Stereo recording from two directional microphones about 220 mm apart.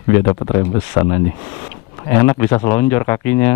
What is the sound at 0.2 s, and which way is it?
Speech, 20° left (ahead or behind).